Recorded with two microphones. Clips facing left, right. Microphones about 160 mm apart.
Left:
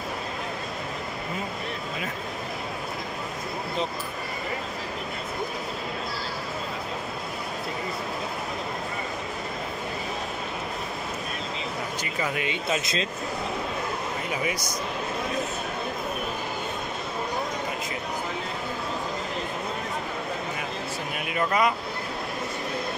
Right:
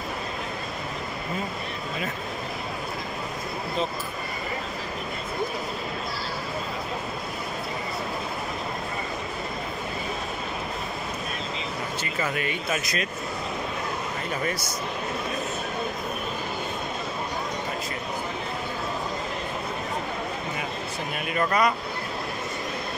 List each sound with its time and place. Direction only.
12.0 s speech: 15° left (ahead or behind)
14.3 s speech: 15° left (ahead or behind)
21.3 s speech: 10° left (ahead or behind)